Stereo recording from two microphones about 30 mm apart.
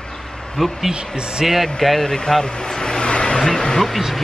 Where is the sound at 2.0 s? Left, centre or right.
Left.